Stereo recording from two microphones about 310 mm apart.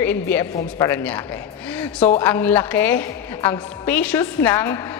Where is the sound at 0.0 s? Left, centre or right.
Centre.